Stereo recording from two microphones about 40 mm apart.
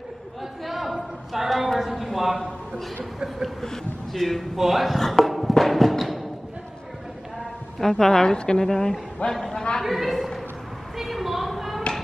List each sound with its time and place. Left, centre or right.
0.7 s a sound: centre
3.6 s speech: centre
5.2 s music: centre
7.8 s a woman's voice: centre
9.8 s speech: centre
11.0 s a sound: centre